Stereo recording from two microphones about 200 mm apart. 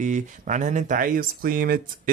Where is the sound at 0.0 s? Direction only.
40° right (ahead or behind).